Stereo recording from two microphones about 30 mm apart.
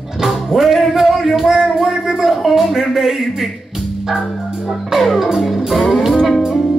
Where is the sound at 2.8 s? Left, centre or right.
Centre.